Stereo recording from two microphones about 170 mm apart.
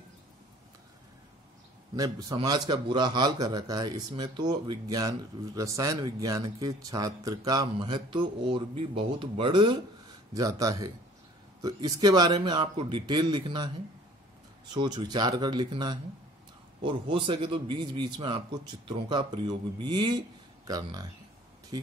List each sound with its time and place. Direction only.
2.0 s speech: 20° right (ahead or behind)
14.7 s speech: 25° right (ahead or behind)